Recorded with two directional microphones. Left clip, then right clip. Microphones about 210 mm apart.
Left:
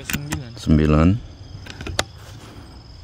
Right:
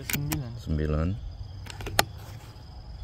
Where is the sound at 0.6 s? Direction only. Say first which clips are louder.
Left 16 dB; 45° left (ahead or behind).